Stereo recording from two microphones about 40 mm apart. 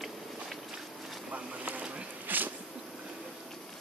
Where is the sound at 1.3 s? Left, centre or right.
Right.